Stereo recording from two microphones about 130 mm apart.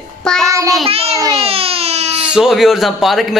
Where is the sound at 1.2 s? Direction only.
25° right (ahead or behind).